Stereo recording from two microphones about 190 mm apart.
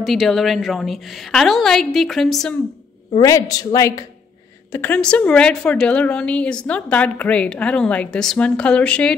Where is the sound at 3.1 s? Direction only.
20° left (ahead or behind).